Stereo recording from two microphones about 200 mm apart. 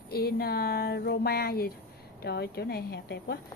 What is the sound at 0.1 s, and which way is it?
A woman's voice, 50° left (ahead or behind).